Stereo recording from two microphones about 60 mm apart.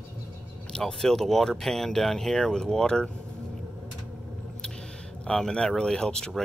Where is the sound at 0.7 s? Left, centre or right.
Centre.